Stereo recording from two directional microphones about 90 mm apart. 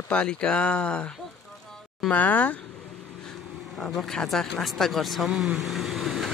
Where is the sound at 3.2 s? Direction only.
5° left (ahead or behind).